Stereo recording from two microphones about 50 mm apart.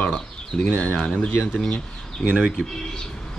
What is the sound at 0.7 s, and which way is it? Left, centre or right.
Speech, left.